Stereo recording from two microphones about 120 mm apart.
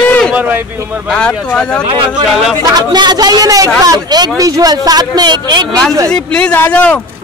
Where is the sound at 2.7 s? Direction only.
35° right (ahead or behind).